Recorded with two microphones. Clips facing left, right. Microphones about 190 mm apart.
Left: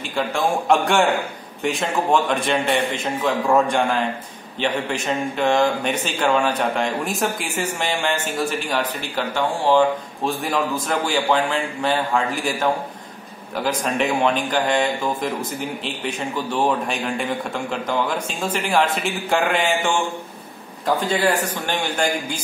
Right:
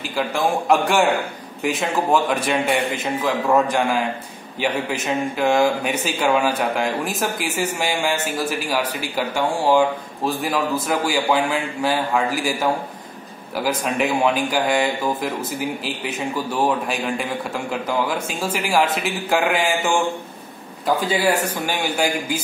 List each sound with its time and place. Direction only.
0.1 s speech: centre (ahead or behind)